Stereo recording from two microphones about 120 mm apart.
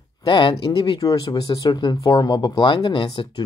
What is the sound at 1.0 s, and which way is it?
Speech, 30° left (ahead or behind).